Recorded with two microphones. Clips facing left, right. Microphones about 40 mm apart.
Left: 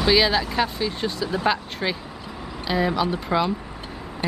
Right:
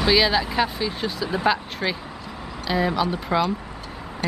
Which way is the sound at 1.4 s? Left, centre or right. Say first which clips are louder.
Right 2 dB; centre.